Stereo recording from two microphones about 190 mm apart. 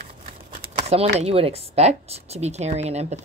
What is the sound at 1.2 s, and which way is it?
Speech, 30° right (ahead or behind).